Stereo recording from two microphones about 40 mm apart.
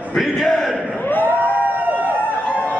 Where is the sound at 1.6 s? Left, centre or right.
Right.